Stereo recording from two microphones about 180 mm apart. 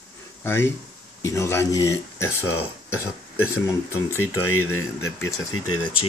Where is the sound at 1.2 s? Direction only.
15° left (ahead or behind).